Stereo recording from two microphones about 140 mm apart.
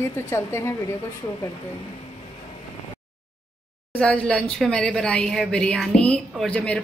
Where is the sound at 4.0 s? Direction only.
5° left (ahead or behind).